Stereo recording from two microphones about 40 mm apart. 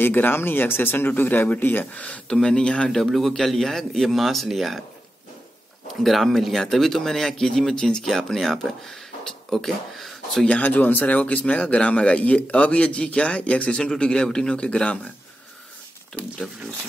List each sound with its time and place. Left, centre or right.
0.0 s speech: left
1.9 s speech: left
2.3 s speech: centre
3.1 s speech: centre
6.0 s speech: centre
9.2 s a sound: centre
10.6 s speech: left; by 14.5 s centre
14.5 s speech: left